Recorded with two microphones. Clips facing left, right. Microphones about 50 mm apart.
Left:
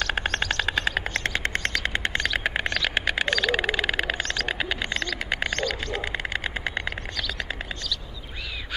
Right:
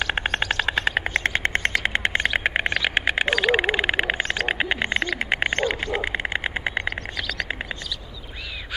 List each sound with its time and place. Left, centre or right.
0.0 s bird: centre; by 4.9 s right
4.9 s bird: right
5.2 s bird: right; by 7.5 s centre